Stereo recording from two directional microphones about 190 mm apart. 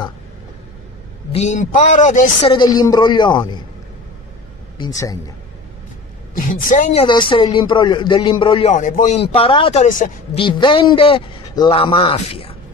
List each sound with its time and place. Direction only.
1.3 s speech: 40° left (ahead or behind)
2.5 s a man's voice: 20° left (ahead or behind)
4.7 s a man's voice: 20° left (ahead or behind)
6.3 s a man's voice: 45° left (ahead or behind); by 8.7 s 25° left (ahead or behind)
8.7 s speech: 40° left (ahead or behind)
10.3 s a man's voice: 25° left (ahead or behind)